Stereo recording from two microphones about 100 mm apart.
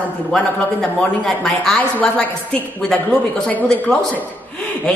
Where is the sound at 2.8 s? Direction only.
5° left (ahead or behind).